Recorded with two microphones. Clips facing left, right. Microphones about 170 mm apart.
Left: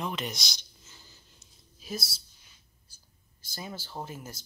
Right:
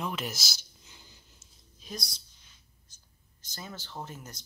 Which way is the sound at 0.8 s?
15° right (ahead or behind).